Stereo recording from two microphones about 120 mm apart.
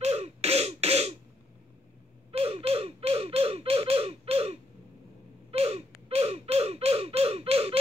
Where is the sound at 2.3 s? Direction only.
55° right (ahead or behind).